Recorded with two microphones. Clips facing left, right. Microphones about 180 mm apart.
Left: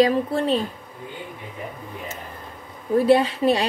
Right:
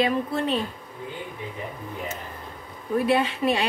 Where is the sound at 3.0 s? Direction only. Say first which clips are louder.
Left 5 dB; 35° left (ahead or behind).